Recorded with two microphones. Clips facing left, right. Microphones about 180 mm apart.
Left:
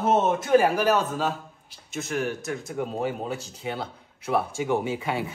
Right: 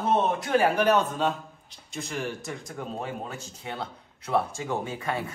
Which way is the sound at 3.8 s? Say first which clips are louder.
Left 2 dB; 5° left (ahead or behind).